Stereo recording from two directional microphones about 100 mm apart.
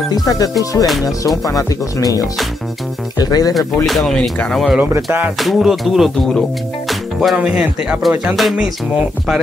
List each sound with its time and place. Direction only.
0.1 s speech: 40° left (ahead or behind)
3.8 s music: centre (ahead or behind)
4.7 s speech: 25° right (ahead or behind)
5.4 s music: centre (ahead or behind)
7.3 s speech: 10° right (ahead or behind)
8.4 s music: centre (ahead or behind)